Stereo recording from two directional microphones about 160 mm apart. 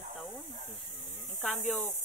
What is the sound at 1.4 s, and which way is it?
Speech, centre (ahead or behind).